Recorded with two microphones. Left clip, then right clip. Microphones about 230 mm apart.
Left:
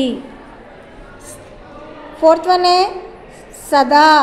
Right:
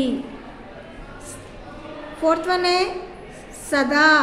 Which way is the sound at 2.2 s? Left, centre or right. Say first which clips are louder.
Left 8 dB; centre.